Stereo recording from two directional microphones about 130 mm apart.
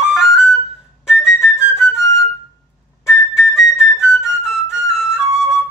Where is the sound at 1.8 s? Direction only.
20° left (ahead or behind).